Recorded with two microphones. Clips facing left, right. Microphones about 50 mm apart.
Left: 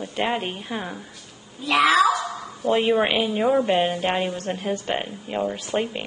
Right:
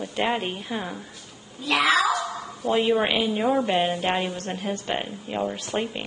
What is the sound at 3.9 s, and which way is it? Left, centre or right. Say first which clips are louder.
Speech: left 1 dB; left.